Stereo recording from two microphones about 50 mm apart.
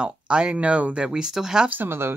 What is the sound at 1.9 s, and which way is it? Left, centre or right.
Speech, right.